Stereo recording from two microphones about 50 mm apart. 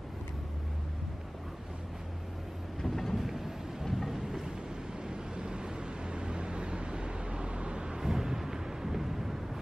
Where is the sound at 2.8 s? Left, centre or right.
Centre.